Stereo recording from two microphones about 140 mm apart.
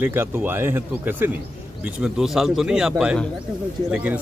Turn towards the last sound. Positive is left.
turn(degrees=-10)  # may be behind; listen again after turning